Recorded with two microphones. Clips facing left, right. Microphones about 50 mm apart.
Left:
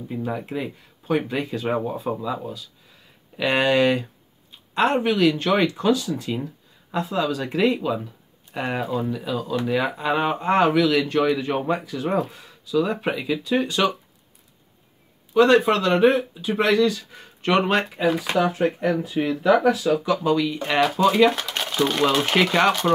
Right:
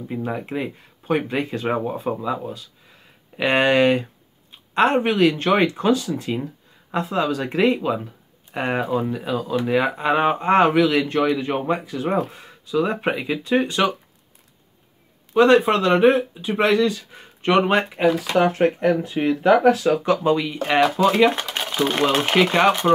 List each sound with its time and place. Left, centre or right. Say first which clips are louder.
0.1 s speech: right 1 dB; right
9.5 s speech: right 3 dB; right
15.3 s speech: right 1 dB; right
18.0 s speech: right 4 dB; right
20.6 s speech: right 6 dB; right
21.5 s a sound: even; centre
22.3 s speech: right 2 dB; centre